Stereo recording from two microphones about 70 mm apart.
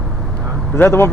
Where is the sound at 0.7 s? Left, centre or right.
Left.